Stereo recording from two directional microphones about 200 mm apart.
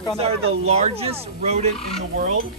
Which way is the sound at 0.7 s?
30° right (ahead or behind).